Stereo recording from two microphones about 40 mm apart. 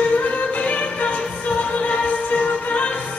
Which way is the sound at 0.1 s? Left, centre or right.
Left.